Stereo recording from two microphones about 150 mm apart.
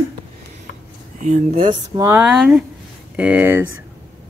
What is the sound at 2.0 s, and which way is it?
Speech, 15° right (ahead or behind).